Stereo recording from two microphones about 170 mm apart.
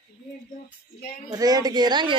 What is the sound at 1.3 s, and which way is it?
Speech, 25° right (ahead or behind).